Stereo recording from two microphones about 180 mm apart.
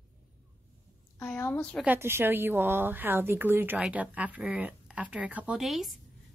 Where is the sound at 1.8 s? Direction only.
10° right (ahead or behind).